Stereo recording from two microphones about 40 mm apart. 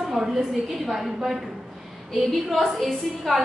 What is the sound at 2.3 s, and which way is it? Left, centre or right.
A woman's voice, centre.